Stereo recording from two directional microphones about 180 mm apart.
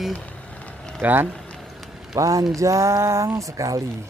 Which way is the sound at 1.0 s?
10° right (ahead or behind).